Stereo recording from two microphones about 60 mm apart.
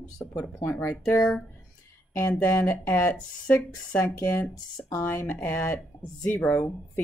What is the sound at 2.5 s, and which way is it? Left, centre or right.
Speech, left.